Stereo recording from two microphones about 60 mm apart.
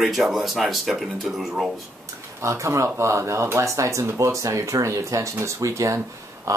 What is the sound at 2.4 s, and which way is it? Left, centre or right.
Speech, right.